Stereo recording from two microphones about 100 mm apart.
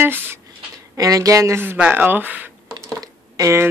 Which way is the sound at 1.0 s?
35° right (ahead or behind).